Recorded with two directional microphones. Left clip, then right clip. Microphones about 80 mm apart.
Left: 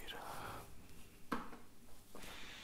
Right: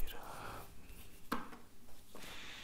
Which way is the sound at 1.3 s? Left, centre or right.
Right.